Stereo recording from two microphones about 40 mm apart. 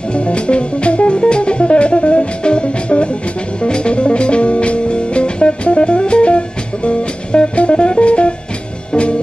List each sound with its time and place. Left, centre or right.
0.1 s music: left